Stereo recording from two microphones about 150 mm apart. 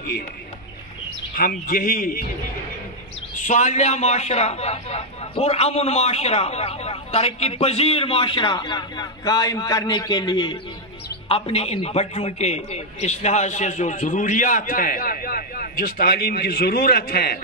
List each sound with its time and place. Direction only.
1.3 s a man's voice: 75° left (ahead or behind)
3.4 s a man's voice: 55° left (ahead or behind); by 10.6 s 30° left (ahead or behind)
11.2 s a man's voice: 40° left (ahead or behind); by 17.4 s 90° left